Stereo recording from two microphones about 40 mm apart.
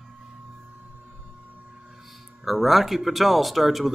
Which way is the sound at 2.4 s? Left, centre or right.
Centre.